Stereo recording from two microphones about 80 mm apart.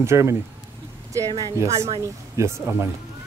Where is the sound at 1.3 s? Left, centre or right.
Right.